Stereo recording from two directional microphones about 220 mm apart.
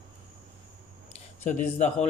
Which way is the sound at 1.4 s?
30° left (ahead or behind).